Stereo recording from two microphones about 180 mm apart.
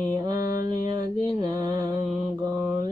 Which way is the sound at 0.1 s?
20° right (ahead or behind).